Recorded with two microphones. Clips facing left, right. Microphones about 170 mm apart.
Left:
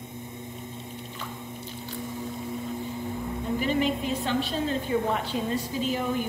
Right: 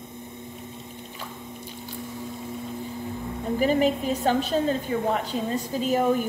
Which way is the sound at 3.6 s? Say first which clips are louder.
Right 5 dB; 45° right (ahead or behind).